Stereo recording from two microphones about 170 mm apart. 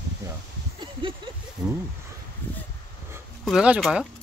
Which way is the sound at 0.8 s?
30° right (ahead or behind).